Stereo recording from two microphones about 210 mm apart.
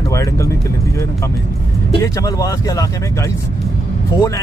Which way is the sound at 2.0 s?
15° left (ahead or behind).